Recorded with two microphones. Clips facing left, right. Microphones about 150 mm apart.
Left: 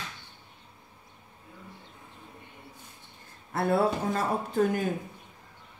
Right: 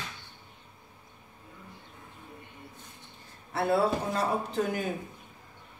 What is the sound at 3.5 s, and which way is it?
A man's voice, 50° left (ahead or behind).